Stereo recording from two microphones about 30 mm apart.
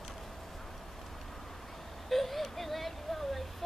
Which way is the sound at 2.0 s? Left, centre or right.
Centre.